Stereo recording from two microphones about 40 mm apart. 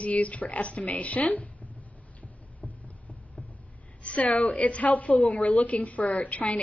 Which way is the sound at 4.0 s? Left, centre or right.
Left.